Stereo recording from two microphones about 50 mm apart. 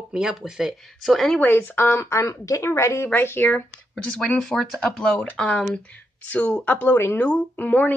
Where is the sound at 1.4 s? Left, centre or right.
Left.